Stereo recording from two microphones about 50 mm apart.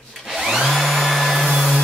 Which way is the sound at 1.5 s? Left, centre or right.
Centre.